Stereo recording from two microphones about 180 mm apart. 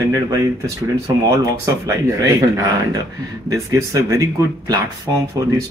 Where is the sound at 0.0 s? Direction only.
15° right (ahead or behind).